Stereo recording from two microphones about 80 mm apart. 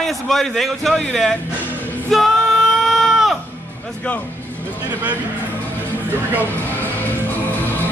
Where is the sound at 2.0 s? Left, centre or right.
Centre.